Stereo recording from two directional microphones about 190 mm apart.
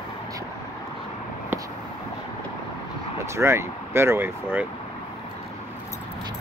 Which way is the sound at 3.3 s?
15° right (ahead or behind).